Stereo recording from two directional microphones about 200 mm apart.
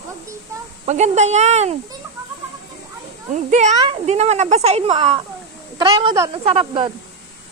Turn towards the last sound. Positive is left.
turn(degrees=-25)  # may be behind; listen again after turning